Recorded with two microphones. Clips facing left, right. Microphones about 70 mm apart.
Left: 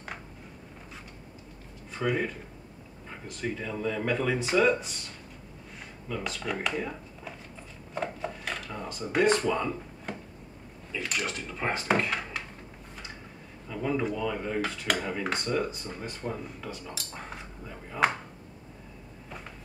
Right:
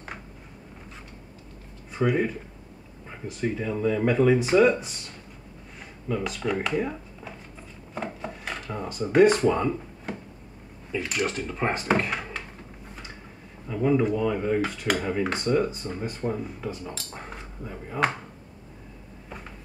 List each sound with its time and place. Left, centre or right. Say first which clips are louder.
2.0 s speech: right 4 dB; centre
6.0 s speech: right 6 dB; centre
7.9 s dishes: even; centre
9.4 s speech: right 5 dB; right
11.0 s speech: right 5 dB; centre
11.2 s speech: right 6 dB; right
11.5 s speech: right 4 dB; centre
12.1 s a sound: right 1 dB; centre
13.7 s speech: right 7 dB; centre